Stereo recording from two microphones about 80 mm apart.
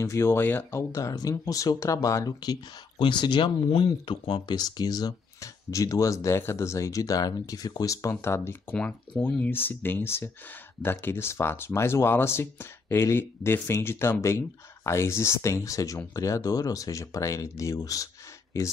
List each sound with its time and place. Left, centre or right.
0.0 s speech: left
3.0 s speech: left
8.7 s speech: centre; by 18.7 s left